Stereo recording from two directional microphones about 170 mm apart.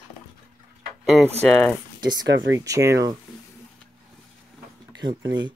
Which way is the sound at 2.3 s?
90° right.